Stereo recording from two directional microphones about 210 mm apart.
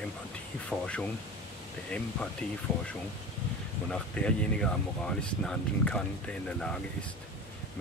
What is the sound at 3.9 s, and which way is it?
Speech, 5° left (ahead or behind).